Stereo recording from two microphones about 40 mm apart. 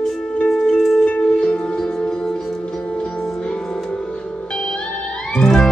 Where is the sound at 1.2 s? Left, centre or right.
Left.